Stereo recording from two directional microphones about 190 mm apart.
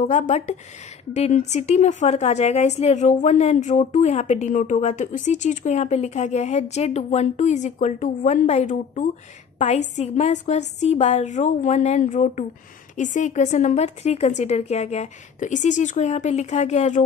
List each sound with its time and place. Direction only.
0.0 s a woman's voice: 40° left (ahead or behind)